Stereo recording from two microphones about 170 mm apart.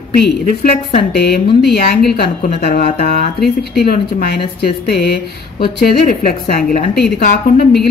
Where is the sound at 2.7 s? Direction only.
55° left (ahead or behind).